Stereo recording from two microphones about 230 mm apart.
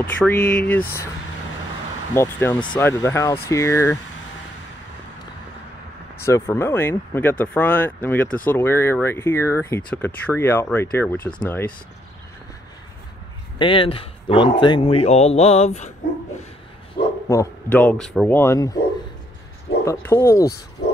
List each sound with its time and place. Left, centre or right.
0.0 s speech: centre
2.1 s speech: centre
6.2 s speech: centre
13.6 s speech: left
16.9 s speech: centre
19.8 s speech: centre